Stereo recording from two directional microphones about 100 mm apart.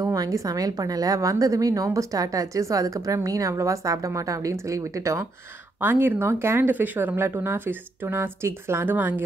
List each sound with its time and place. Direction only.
0.0 s a woman's voice: 35° right (ahead or behind)
5.8 s speech: 20° right (ahead or behind)